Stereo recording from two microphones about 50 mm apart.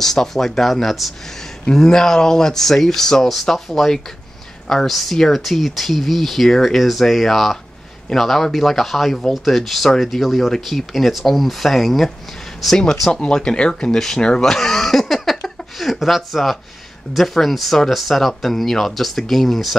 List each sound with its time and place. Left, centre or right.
0.0 s speech: centre
1.7 s speech: centre
12.6 s speech: centre
14.4 s a sound: centre
17.1 s speech: centre